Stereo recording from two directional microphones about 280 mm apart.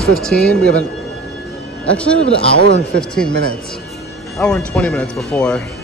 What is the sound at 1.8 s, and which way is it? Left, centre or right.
A man's voice, centre.